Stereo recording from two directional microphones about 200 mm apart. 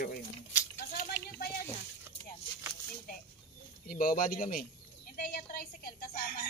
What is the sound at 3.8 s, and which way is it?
Speech, 45° left (ahead or behind).